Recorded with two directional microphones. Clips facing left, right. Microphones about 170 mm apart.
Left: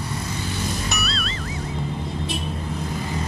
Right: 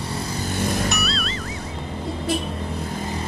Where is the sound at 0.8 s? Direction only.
Centre (ahead or behind).